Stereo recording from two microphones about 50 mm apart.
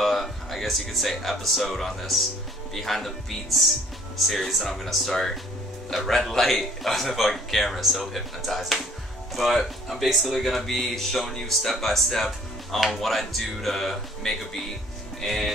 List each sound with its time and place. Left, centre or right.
0.0 s speech: centre